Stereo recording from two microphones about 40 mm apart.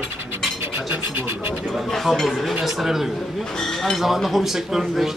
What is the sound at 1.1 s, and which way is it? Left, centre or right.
Speech, right.